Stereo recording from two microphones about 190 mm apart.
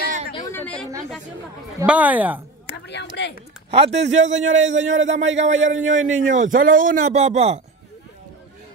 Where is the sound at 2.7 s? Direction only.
65° left (ahead or behind).